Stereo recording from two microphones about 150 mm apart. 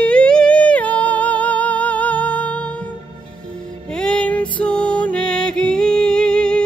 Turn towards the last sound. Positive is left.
turn(degrees=5)  # may be behind; listen again after turning